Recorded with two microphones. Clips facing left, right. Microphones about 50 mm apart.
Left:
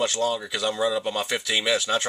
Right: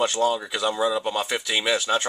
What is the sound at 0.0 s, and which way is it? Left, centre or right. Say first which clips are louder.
Speech: right 2 dB; centre.